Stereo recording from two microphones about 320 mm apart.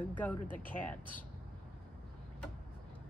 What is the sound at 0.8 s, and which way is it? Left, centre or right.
Speech, centre.